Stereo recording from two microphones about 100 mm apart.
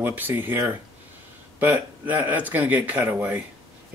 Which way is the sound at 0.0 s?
20° right (ahead or behind).